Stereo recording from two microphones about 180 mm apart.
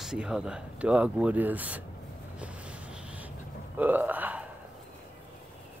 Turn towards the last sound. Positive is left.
turn(degrees=-10)  # may be behind; listen again after turning